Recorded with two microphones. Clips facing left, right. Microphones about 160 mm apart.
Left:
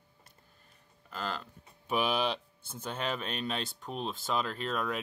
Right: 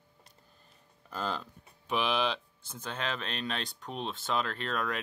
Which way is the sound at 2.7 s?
10° left (ahead or behind).